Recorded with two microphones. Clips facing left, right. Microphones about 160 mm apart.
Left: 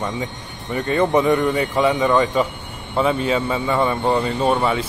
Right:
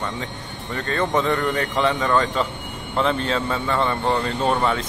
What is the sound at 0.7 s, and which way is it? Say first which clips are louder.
Speech: left 5 dB; 15° left (ahead or behind).